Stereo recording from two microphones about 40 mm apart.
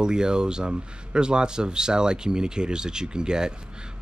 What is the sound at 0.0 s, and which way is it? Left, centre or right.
Speech, centre.